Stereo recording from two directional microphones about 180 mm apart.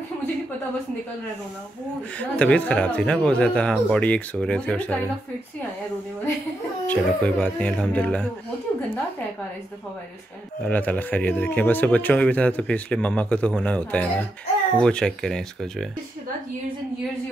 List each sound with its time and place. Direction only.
2.1 s speech: 5° left (ahead or behind)
6.9 s speech: 5° left (ahead or behind)
10.6 s speech: 10° left (ahead or behind)